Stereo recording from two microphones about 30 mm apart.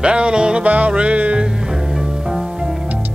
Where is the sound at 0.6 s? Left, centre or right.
Right.